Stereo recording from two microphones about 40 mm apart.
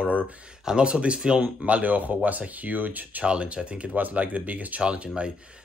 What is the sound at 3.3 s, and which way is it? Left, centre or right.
Speech, right.